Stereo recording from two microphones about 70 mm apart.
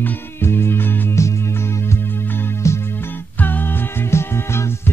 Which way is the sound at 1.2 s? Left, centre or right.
Left.